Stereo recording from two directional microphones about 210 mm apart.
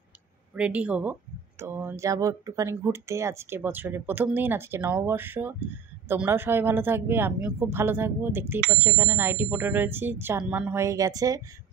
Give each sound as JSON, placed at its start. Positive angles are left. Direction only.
{"t": 0.6, "sound": "speech", "side_deg": -5}